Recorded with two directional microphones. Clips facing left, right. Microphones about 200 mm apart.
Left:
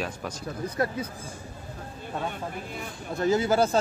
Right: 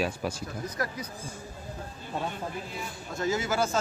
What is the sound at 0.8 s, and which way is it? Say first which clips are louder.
Speech: left 6 dB; 25° left (ahead or behind).